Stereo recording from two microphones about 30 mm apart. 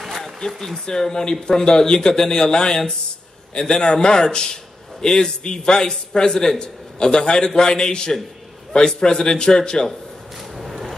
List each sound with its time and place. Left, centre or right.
0.0 s a sound: centre
0.8 s a man's voice: left
10.5 s vehicle: centre